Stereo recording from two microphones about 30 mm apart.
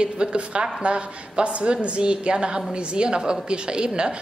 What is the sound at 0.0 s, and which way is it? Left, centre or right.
A woman's voice, right.